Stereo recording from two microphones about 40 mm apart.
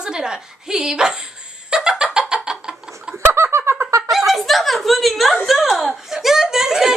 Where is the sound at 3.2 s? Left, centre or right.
Right.